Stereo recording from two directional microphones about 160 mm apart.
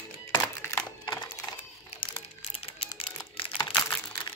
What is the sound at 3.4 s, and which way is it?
Crumpling, 30° left (ahead or behind).